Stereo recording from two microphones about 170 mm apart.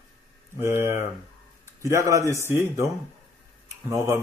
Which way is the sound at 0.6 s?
15° right (ahead or behind).